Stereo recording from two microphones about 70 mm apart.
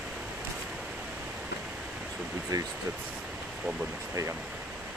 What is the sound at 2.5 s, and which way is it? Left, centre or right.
Speech, right.